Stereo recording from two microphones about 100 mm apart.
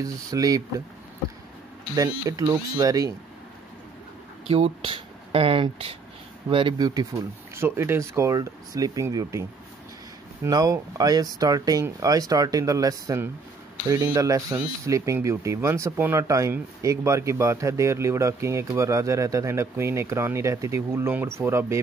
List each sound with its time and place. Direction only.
0.0 s speech: 35° right (ahead or behind)
2.2 s speech: 35° right (ahead or behind)
4.5 s speech: 80° right
6.5 s speech: 55° right (ahead or behind)
7.5 s speech: 25° right (ahead or behind)
10.5 s speech: 35° right (ahead or behind)